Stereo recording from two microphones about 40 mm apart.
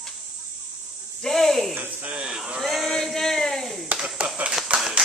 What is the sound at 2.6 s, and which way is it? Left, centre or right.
Speech, centre.